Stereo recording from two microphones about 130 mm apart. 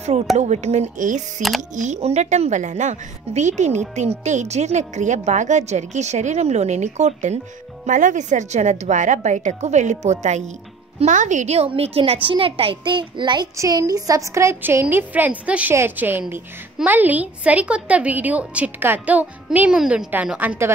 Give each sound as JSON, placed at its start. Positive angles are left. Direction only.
{"t": 0.4, "sound": "speech", "side_deg": -60}
{"t": 1.8, "sound": "speech", "side_deg": -60}
{"t": 7.8, "sound": "a woman's voice", "side_deg": -75}